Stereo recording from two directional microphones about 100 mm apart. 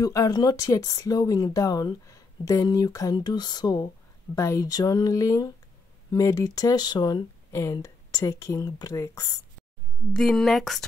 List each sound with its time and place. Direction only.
0.0 s speech: 35° left (ahead or behind)
3.2 s speech: 45° left (ahead or behind)
4.4 s speech: 30° left (ahead or behind)
10.1 s a woman's voice: 5° left (ahead or behind)